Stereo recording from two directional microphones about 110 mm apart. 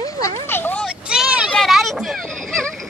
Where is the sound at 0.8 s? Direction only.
5° right (ahead or behind).